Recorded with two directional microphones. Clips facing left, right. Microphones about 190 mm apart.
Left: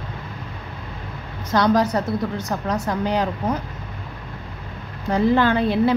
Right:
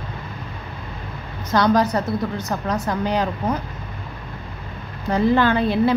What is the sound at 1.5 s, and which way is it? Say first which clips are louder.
A woman's voice: even; 20° left (ahead or behind).